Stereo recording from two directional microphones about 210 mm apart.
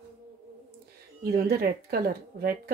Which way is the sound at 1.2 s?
45° right (ahead or behind).